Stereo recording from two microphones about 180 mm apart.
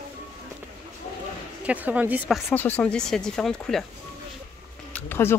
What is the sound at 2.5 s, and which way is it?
Speech, 10° left (ahead or behind).